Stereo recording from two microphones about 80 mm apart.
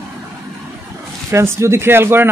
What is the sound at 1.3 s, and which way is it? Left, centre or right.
Speech, right.